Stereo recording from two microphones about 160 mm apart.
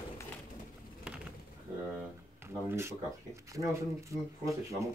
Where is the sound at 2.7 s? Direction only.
15° right (ahead or behind).